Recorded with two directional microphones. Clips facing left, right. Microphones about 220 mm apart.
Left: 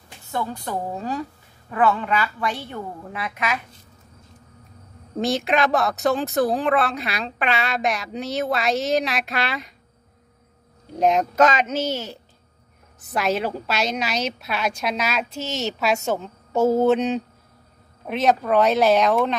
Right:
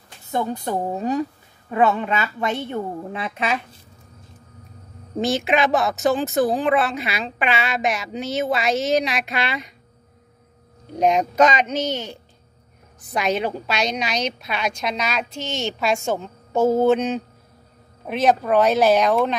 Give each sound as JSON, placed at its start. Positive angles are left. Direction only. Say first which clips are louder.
{"t": 0.3, "sound": "a woman's voice", "louder": "right 4 dB", "side_deg": -20}
{"t": 5.2, "sound": "speech", "louder": "right 1 dB", "side_deg": 0}
{"t": 11.0, "sound": "speech", "louder": "right 1 dB", "side_deg": 0}